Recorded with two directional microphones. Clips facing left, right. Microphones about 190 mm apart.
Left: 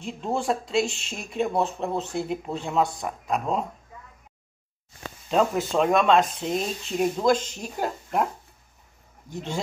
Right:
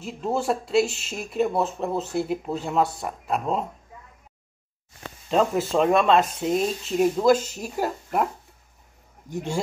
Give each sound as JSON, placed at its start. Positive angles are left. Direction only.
{"t": 0.0, "sound": "speech", "side_deg": -5}
{"t": 5.3, "sound": "speech", "side_deg": 0}
{"t": 9.3, "sound": "speech", "side_deg": -10}